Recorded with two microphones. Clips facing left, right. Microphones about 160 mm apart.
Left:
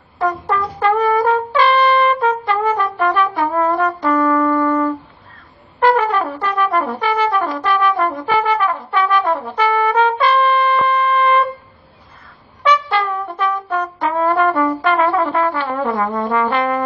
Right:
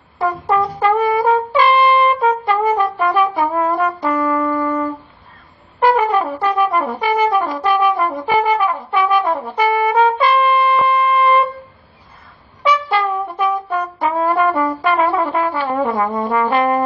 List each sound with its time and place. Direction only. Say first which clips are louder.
0.2 s brass instrument: right 2 dB; 10° right (ahead or behind)
1.1 s trumpet: even; centre (ahead or behind)
1.5 s brass instrument: even; 10° right (ahead or behind)
12.6 s brass instrument: even; 10° right (ahead or behind)
16.5 s brass instrument: right 3 dB; 40° right (ahead or behind)